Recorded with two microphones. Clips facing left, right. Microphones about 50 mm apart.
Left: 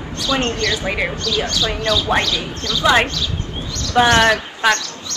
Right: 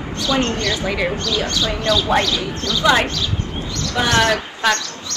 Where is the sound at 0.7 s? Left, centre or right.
Left.